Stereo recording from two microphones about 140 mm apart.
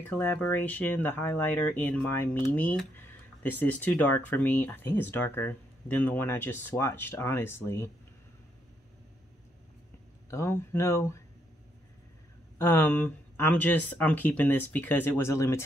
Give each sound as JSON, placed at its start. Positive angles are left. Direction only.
{"t": 0.0, "sound": "speech", "side_deg": 15}
{"t": 10.3, "sound": "speech", "side_deg": 20}
{"t": 12.5, "sound": "speech", "side_deg": 15}